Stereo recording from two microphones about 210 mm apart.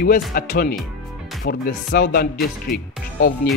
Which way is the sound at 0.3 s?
45° left (ahead or behind).